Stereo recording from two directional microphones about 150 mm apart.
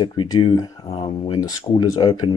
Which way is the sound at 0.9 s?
40° left (ahead or behind).